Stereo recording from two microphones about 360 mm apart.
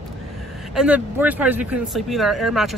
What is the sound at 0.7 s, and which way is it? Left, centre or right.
Speech, centre.